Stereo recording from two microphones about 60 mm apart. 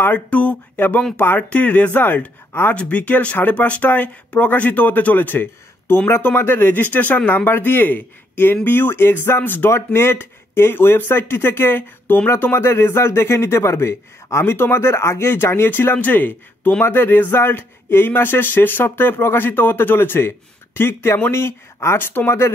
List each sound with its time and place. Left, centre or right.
0.0 s speech: left
0.7 s speech: left
2.7 s speech: left